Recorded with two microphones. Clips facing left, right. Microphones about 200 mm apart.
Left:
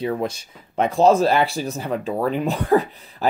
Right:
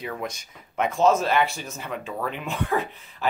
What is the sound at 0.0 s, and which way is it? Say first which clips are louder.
Speech: left 8 dB; 30° left (ahead or behind).